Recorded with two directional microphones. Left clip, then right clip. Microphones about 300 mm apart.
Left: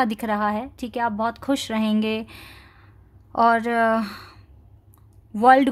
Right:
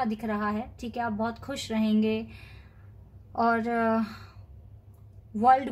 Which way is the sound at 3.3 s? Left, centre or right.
Left.